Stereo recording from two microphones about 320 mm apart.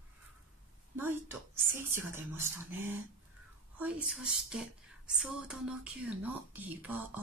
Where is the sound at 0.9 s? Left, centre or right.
Centre.